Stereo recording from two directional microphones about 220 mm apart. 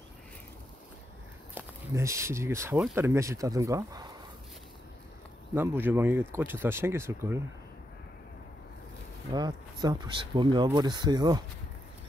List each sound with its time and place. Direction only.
1.5 s speech: 15° right (ahead or behind)
5.5 s speech: 10° right (ahead or behind)
9.3 s speech: 20° right (ahead or behind)